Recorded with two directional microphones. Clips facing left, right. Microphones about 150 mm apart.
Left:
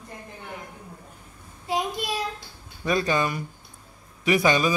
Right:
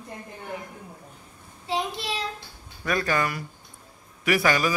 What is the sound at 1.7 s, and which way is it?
Child singing, 15° left (ahead or behind).